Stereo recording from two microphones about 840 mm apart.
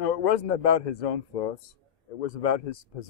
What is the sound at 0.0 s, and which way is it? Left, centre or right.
Speech, left.